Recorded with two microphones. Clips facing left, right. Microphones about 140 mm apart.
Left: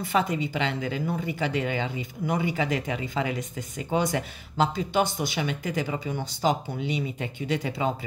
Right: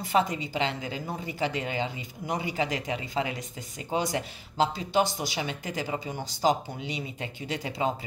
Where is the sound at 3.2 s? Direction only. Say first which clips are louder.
Left 2 dB; 40° left (ahead or behind).